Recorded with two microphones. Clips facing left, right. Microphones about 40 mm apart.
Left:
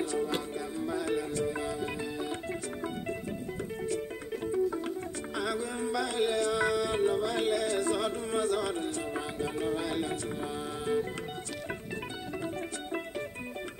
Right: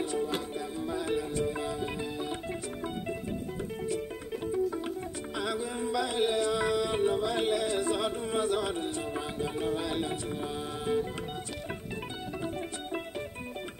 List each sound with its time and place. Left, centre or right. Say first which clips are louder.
0.7 s music: even; right
5.4 s music: even; right